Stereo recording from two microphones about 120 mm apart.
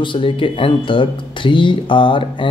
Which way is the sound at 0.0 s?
45° left (ahead or behind).